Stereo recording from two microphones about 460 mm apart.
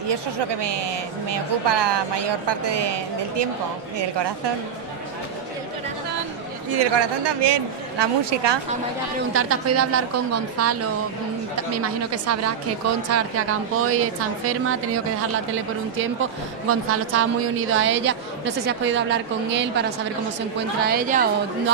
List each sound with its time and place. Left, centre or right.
0.1 s speech: right
6.7 s speech: right
9.3 s a woman's voice: right
16.2 s a woman's voice: right
20.8 s a woman's voice: centre